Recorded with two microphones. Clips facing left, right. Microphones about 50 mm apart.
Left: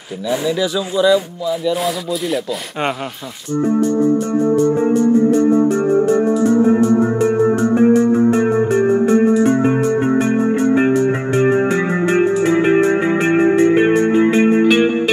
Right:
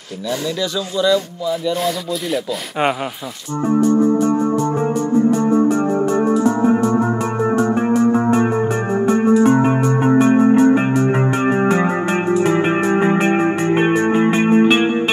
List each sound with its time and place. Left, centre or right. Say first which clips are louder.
0.3 s speech: left 4 dB; centre
1.5 s speech: left 1 dB; centre
5.4 s music: left 2 dB; right
9.0 s music: left 1 dB; centre
10.5 s music: right 1 dB; centre
11.3 s music: left 1 dB; centre